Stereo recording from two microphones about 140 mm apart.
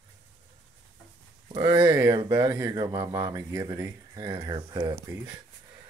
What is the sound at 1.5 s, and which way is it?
Speech, 30° right (ahead or behind).